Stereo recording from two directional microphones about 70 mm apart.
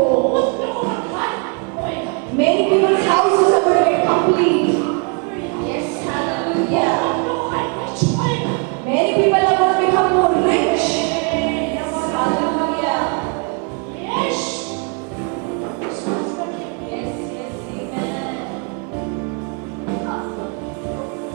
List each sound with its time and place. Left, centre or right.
0.1 s music: right
1.9 s a sound: right
5.6 s music: right